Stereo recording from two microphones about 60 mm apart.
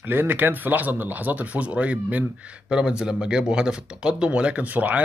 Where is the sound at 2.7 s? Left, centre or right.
Centre.